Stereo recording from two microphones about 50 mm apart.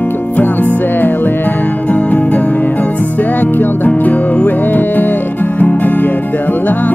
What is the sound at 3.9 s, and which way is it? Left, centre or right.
Music, left.